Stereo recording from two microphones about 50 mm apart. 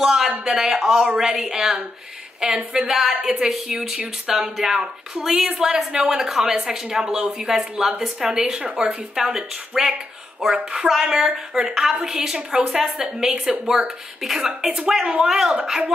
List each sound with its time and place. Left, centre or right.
0.0 s a woman's voice: centre
2.9 s a woman's voice: centre